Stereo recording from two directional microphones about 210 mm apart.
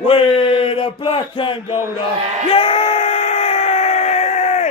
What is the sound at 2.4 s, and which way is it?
Yell, 25° left (ahead or behind).